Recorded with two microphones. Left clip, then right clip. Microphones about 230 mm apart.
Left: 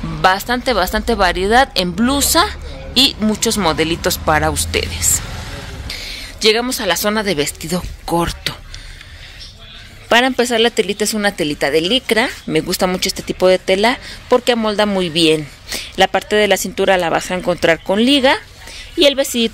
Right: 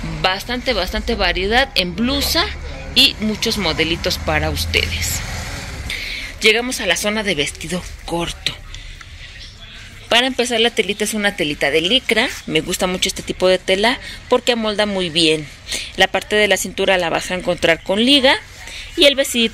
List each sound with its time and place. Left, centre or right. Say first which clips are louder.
0.2 s speech: left 5 dB; left
5.9 s speech: right 3 dB; centre; by 8.3 s left
10.0 s speech: left 3 dB; left